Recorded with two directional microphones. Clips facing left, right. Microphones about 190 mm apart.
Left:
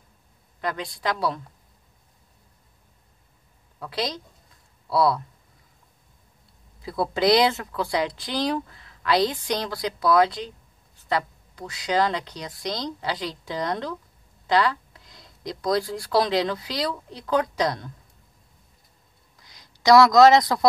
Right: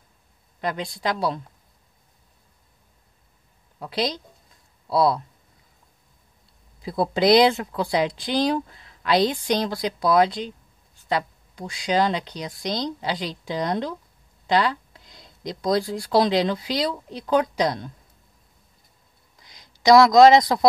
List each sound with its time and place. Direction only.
0.6 s speech: 20° right (ahead or behind)
4.8 s speech: 20° right (ahead or behind)
6.8 s speech: 20° right (ahead or behind)
11.1 s a sound: 15° right (ahead or behind)
11.8 s speech: 20° right (ahead or behind)
19.4 s speech: 20° right (ahead or behind)